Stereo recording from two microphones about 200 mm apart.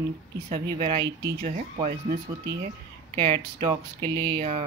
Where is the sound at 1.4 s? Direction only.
45° right (ahead or behind).